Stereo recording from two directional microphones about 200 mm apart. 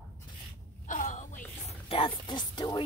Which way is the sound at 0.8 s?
40° left (ahead or behind).